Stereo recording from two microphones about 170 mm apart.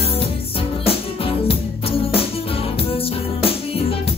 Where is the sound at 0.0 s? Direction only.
35° left (ahead or behind).